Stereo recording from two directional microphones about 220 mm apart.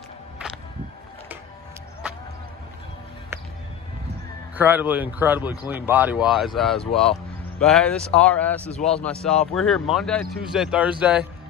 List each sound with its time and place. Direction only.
4.6 s speech: 10° right (ahead or behind)